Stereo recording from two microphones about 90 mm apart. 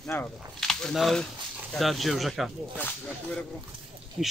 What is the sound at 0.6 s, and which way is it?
Speech, 5° left (ahead or behind).